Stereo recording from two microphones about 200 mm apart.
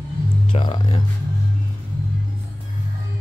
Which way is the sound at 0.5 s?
25° left (ahead or behind).